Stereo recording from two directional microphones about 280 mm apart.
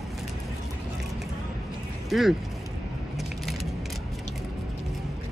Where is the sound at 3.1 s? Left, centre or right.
Centre.